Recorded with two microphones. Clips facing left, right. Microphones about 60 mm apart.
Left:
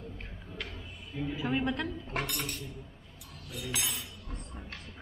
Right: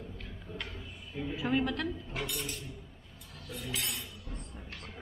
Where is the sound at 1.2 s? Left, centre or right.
Centre.